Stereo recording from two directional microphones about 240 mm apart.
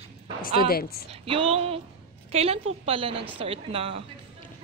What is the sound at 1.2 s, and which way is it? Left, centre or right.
A woman's voice, right.